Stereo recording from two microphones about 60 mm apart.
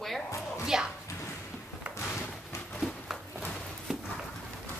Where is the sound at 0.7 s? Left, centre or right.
Centre.